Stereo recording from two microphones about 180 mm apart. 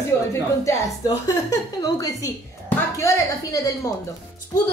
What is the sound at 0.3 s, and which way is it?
A woman's voice, 20° left (ahead or behind).